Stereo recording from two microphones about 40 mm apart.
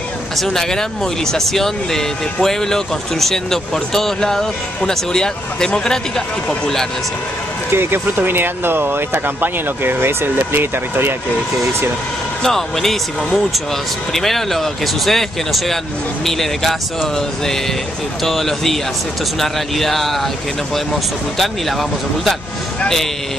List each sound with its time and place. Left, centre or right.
0.4 s speech: centre
7.7 s speech: right
12.4 s speech: centre
14.1 s speech: centre
18.2 s speech: centre
21.4 s speech: centre